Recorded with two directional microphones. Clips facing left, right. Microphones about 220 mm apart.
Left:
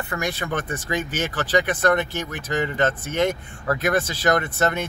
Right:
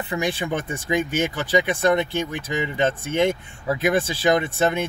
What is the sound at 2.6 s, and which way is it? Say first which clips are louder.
Speech: even; 15° right (ahead or behind).